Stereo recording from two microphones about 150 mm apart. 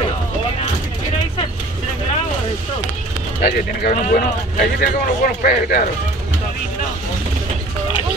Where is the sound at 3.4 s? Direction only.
80° left.